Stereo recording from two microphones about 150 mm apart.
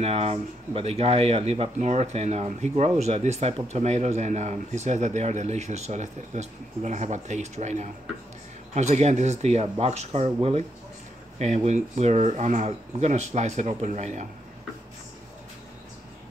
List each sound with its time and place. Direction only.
0.0 s speech: 40° right (ahead or behind)